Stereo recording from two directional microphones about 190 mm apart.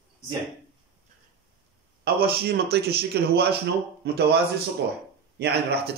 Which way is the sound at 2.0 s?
55° right (ahead or behind).